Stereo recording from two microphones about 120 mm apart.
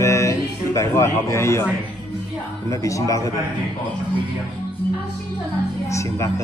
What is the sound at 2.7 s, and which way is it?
Speech, 25° left (ahead or behind).